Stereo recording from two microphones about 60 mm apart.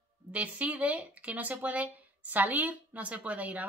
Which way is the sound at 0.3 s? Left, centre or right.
Right.